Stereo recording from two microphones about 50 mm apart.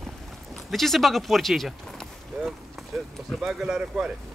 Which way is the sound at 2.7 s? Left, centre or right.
Centre.